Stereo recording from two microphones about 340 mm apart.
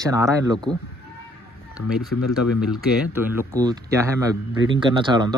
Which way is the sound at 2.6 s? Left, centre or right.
Centre.